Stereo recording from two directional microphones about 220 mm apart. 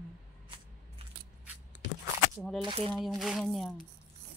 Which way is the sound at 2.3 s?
Centre (ahead or behind).